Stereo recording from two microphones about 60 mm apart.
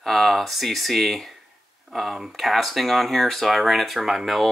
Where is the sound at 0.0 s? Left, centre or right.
Centre.